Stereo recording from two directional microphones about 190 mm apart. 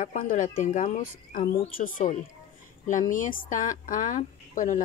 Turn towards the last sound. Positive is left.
turn(degrees=45)  # may be behind; listen again after turning